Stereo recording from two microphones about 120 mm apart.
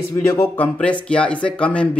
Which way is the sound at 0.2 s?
25° left (ahead or behind).